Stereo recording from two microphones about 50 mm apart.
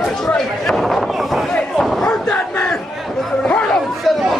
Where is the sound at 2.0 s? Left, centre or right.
Centre.